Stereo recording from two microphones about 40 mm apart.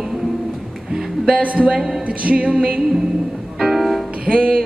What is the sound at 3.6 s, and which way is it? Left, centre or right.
Music, centre.